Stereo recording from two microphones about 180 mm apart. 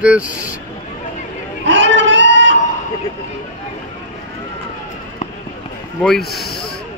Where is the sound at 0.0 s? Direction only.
5° right (ahead or behind).